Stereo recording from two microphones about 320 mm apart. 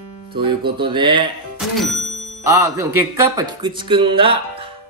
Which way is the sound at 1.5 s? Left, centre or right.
Centre.